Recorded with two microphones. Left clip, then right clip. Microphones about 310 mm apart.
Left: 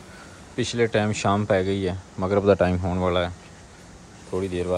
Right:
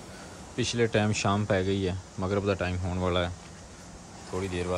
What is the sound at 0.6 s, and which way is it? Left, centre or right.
Speech, centre.